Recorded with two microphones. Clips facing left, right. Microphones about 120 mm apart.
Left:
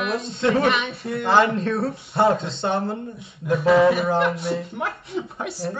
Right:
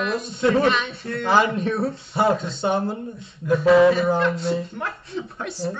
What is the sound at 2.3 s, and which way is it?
Speech, 25° left (ahead or behind).